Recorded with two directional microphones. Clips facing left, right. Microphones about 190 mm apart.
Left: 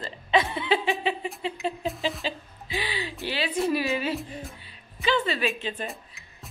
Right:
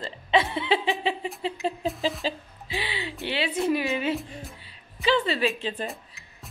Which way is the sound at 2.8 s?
25° right (ahead or behind).